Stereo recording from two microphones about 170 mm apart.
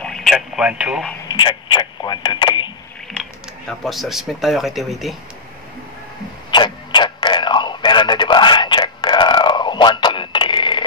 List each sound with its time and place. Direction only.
0.0 s radio: centre (ahead or behind)
1.3 s speech: 25° left (ahead or behind)
3.1 s speech: centre (ahead or behind)
6.5 s a sound: 25° left (ahead or behind)